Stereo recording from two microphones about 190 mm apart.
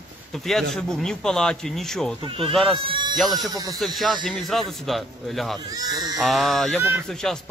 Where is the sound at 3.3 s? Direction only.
20° right (ahead or behind).